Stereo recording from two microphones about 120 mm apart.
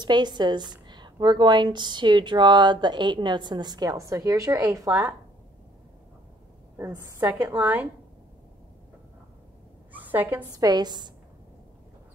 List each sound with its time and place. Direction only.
0.0 s a woman's voice: 35° right (ahead or behind)
6.8 s a woman's voice: 20° right (ahead or behind)
9.9 s a woman's voice: 15° right (ahead or behind)
10.5 s a woman's voice: 35° right (ahead or behind)